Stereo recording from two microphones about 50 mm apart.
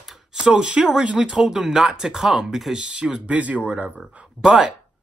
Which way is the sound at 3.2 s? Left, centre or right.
Right.